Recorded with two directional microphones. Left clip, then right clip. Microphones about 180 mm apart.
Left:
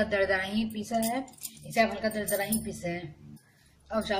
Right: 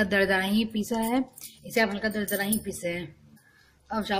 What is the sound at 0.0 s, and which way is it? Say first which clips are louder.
Speech: right 3 dB; 50° right (ahead or behind).